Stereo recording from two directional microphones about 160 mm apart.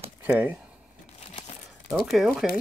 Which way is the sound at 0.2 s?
10° right (ahead or behind).